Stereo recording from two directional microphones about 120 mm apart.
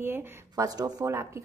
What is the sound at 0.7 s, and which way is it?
Speech, 30° right (ahead or behind).